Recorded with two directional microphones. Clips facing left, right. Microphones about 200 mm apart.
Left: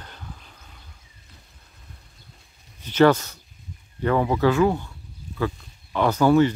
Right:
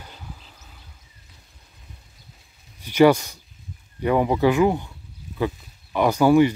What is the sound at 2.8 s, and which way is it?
Speech, 10° right (ahead or behind).